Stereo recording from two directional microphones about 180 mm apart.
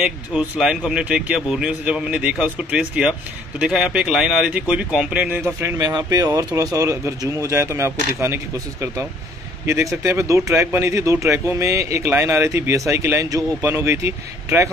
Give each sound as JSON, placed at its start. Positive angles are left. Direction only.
{"t": 0.0, "sound": "speech", "side_deg": -5}
{"t": 9.7, "sound": "speech", "side_deg": -15}